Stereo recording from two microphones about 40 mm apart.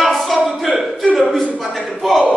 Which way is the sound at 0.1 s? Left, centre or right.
Centre.